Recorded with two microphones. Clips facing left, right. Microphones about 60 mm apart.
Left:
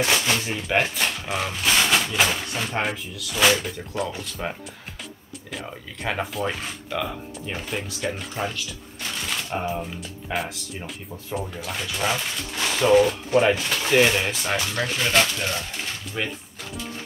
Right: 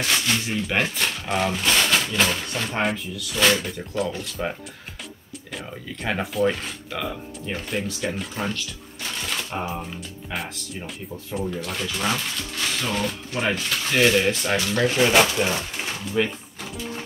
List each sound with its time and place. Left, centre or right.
0.5 s speech: centre
6.0 s speech: centre
12.5 s mechanisms: centre
13.8 s speech: centre
14.3 s speech: centre
15.0 s speech: centre
16.1 s speech: centre